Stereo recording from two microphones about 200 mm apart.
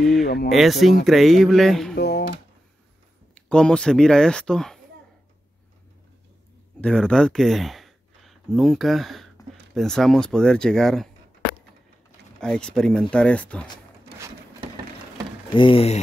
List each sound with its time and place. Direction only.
0.0 s a sound: centre (ahead or behind)
0.5 s speech: centre (ahead or behind)
2.0 s speech: 55° left (ahead or behind)
3.3 s speech: 5° left (ahead or behind)
6.8 s speech: 5° left (ahead or behind)
12.4 s speech: 5° left (ahead or behind)
15.5 s speech: 25° left (ahead or behind)